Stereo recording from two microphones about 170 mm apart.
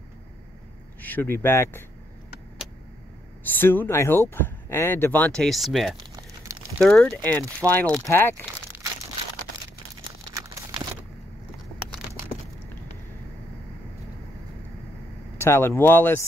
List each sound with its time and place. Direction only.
1.0 s speech: 10° left (ahead or behind)
3.4 s speech: 10° left (ahead or behind)
6.1 s a sound: 20° right (ahead or behind)
6.8 s speech: 5° left (ahead or behind)
10.3 s a sound: 20° right (ahead or behind)
15.3 s speech: 15° left (ahead or behind)